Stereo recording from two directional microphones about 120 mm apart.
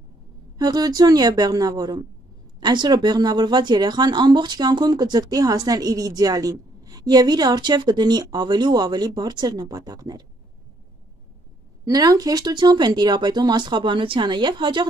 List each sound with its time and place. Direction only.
0.6 s speech: 35° right (ahead or behind)
11.8 s speech: 30° right (ahead or behind)